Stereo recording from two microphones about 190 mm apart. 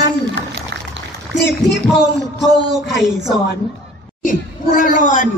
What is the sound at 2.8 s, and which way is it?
Speech, centre (ahead or behind).